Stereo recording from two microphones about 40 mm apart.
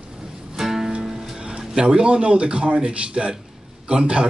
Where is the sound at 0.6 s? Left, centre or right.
Centre.